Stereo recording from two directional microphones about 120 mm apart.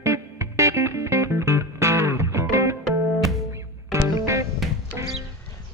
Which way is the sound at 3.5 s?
25° right (ahead or behind).